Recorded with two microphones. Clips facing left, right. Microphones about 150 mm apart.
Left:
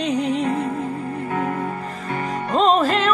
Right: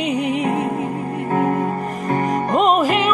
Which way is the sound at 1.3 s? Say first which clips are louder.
Right 7 dB; 40° right (ahead or behind).